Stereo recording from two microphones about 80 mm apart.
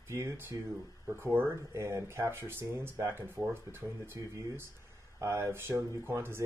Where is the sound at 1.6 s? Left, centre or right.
Right.